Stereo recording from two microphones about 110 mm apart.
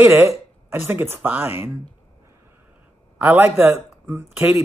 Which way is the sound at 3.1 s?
15° right (ahead or behind).